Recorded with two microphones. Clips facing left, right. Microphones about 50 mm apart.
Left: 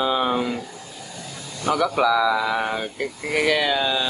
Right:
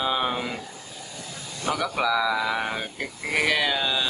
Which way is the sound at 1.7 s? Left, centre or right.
Centre.